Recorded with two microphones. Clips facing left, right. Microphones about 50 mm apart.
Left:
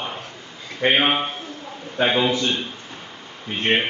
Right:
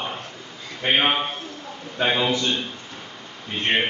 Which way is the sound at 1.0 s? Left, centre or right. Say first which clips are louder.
Left 1 dB; centre.